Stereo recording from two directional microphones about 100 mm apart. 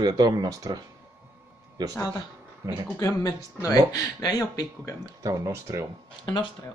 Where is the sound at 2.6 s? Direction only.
30° right (ahead or behind).